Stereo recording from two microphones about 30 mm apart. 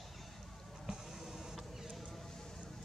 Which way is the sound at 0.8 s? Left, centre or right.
Centre.